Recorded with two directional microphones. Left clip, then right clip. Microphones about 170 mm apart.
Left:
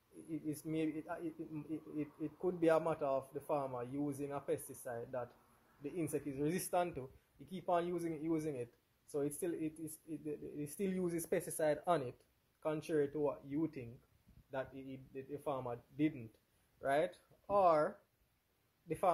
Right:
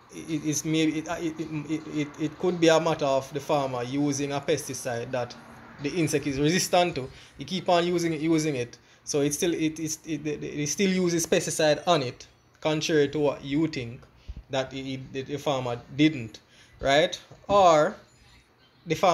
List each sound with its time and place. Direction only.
0.3 s speech: 5° left (ahead or behind)